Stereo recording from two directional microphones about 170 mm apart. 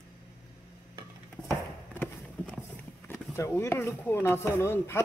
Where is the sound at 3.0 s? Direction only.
15° left (ahead or behind).